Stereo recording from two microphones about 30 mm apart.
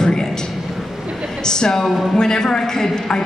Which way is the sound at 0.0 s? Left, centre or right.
Left.